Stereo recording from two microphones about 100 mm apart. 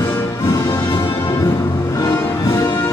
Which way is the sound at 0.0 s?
30° left (ahead or behind).